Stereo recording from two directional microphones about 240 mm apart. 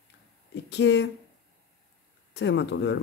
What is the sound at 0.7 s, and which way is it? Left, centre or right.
Speech, left.